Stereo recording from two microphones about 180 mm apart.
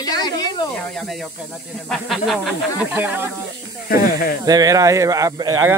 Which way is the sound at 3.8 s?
55° left (ahead or behind).